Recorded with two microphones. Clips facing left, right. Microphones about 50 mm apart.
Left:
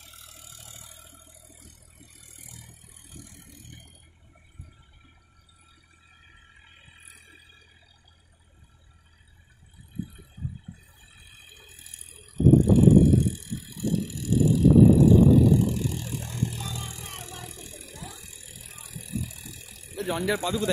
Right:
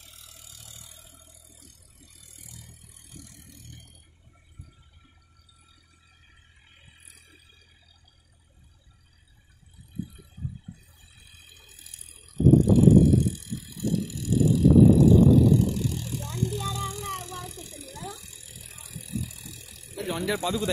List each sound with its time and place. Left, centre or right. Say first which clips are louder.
0.7 s vehicle: left 2 dB; centre
3.2 s vehicle: left 1 dB; centre
7.1 s a sound: left 4 dB; left
11.1 s bicycle: left 2 dB; centre
15.0 s vehicle: even; centre